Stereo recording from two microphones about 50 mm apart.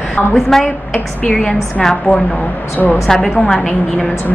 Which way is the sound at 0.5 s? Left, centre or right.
Centre.